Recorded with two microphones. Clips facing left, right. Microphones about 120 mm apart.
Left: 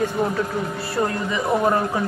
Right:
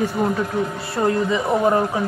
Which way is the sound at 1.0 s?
15° right (ahead or behind).